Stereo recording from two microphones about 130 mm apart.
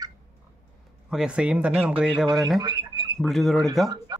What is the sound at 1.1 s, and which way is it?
Speech, 5° right (ahead or behind).